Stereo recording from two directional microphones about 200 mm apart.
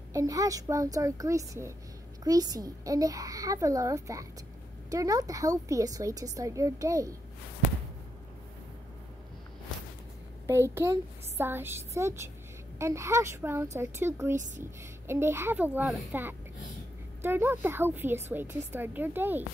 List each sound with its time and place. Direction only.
0.1 s a woman's voice: 15° right (ahead or behind)
10.4 s a woman's voice: 15° right (ahead or behind)